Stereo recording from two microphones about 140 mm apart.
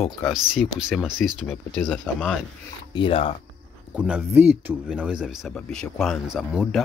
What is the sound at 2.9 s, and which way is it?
Speech, 35° left (ahead or behind).